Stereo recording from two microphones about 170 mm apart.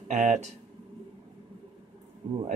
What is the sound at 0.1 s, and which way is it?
Speech, 45° right (ahead or behind).